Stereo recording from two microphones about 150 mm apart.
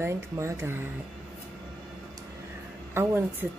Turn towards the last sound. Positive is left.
turn(degrees=-15)  # may be behind; listen again after turning